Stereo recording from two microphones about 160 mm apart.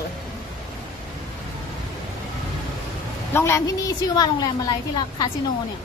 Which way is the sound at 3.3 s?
15° left (ahead or behind).